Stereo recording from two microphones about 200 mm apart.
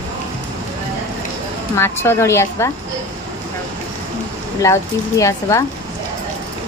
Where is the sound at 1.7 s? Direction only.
10° left (ahead or behind).